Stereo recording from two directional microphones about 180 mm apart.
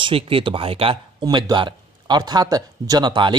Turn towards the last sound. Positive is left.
turn(degrees=-25)  # may be behind; listen again after turning